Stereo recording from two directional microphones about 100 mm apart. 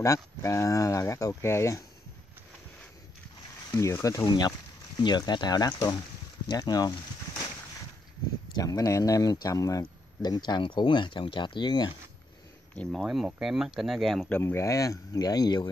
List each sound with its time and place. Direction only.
0.0 s speech: 30° left (ahead or behind)
3.7 s speech: 30° left (ahead or behind)
8.5 s speech: 35° left (ahead or behind)
12.9 s speech: centre (ahead or behind)
14.4 s speech: 30° left (ahead or behind); by 15.7 s 45° left (ahead or behind)